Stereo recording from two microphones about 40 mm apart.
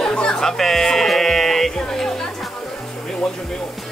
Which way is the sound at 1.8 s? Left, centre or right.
Centre.